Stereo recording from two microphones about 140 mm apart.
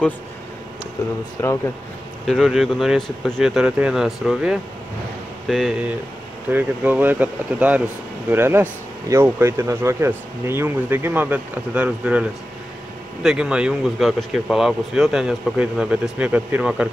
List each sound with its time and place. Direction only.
1.4 s speech: 20° left (ahead or behind)
2.2 s speech: centre (ahead or behind)
6.5 s speech: 10° right (ahead or behind)